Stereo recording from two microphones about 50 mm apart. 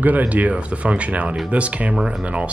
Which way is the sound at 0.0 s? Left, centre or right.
Right.